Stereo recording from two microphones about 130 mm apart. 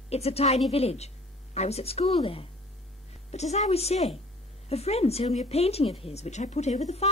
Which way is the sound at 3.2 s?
60° left (ahead or behind).